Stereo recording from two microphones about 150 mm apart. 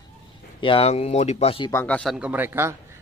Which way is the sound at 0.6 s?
35° left (ahead or behind).